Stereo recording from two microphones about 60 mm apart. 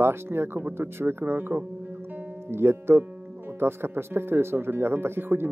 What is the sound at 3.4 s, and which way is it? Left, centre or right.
Speech, right.